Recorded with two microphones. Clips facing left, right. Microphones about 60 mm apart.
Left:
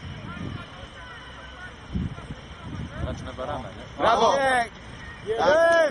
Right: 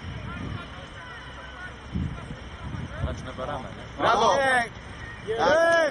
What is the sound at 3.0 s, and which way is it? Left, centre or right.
Speech, centre.